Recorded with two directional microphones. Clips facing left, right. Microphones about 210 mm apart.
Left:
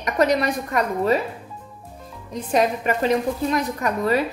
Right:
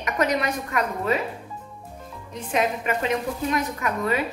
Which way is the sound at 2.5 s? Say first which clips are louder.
Left 4 dB; 35° left (ahead or behind).